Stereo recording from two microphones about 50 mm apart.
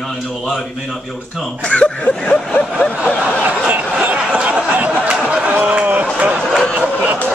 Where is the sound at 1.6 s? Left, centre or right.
Left.